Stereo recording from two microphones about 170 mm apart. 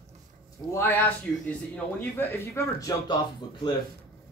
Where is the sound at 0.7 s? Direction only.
10° left (ahead or behind).